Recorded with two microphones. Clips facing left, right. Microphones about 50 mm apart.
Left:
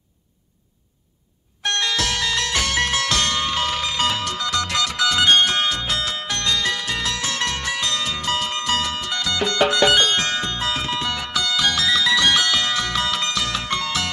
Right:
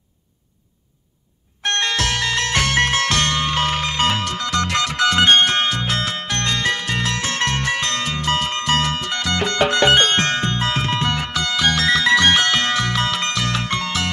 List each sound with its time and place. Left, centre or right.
1.6 s music: right